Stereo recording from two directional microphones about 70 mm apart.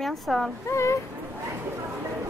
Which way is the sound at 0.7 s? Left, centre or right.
Left.